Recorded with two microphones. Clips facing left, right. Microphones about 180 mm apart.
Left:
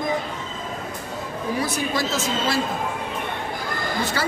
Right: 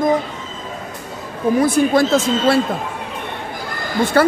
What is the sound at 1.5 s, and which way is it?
Speech, 50° right (ahead or behind).